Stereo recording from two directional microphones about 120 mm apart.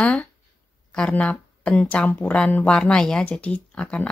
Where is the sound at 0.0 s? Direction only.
10° left (ahead or behind).